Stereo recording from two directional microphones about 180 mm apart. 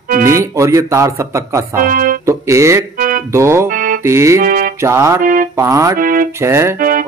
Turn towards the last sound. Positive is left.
turn(degrees=-50)  # may be behind; listen again after turning